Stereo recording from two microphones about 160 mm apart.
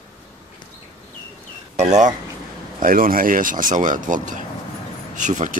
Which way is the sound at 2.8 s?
60° right (ahead or behind).